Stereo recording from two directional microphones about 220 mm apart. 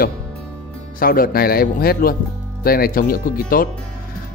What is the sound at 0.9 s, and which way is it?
Speech, 40° left (ahead or behind).